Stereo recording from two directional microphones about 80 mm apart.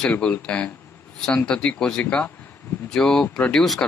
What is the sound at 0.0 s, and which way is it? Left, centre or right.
Speech, centre.